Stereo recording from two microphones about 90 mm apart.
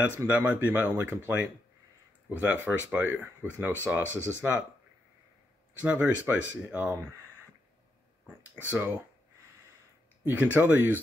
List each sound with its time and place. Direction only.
0.1 s speech: 20° right (ahead or behind)
2.5 s speech: 20° right (ahead or behind)
4.1 s speech: 25° left (ahead or behind)
4.4 s speech: 15° right (ahead or behind)
5.8 s speech: 15° right (ahead or behind)
8.6 s speech: 20° right (ahead or behind)
10.2 s speech: 20° right (ahead or behind)